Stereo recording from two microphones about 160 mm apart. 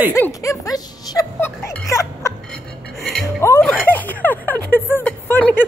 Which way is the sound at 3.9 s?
10° left (ahead or behind).